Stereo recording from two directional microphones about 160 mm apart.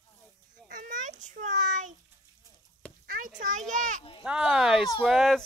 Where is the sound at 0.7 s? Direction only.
50° right (ahead or behind).